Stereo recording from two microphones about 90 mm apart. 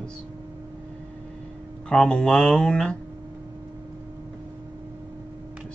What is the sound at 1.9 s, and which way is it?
Speech, 10° left (ahead or behind).